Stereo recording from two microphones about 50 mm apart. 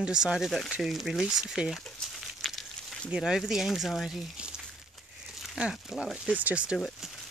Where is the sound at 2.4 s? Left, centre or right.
Centre.